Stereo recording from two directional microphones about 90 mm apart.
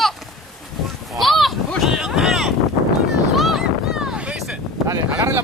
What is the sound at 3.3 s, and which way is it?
Vehicle, 5° right (ahead or behind).